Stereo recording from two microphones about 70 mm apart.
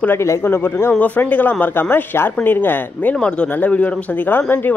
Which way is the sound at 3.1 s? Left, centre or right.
Centre.